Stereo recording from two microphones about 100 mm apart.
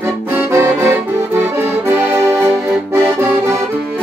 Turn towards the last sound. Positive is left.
turn(degrees=-25)  # may be behind; listen again after turning